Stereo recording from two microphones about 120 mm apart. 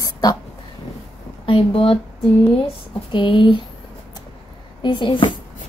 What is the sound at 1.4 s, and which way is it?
Speech, 50° left (ahead or behind).